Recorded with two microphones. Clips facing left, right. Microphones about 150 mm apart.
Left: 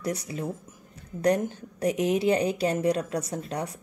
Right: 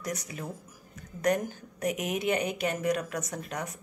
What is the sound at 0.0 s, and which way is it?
A woman's voice, 30° left (ahead or behind).